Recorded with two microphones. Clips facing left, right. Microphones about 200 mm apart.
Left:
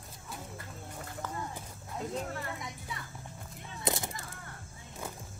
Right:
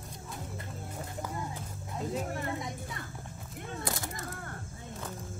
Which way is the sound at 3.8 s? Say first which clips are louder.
Left 6 dB; 20° left (ahead or behind).